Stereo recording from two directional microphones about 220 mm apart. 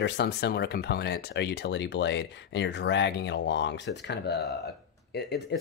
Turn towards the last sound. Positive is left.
turn(degrees=50)  # may be behind; listen again after turning